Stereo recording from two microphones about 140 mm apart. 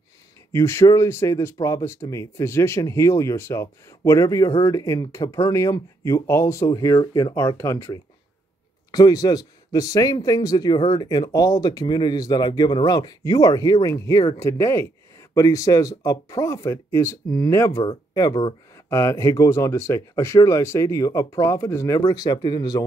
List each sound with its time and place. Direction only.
0.5 s speech: 20° left (ahead or behind)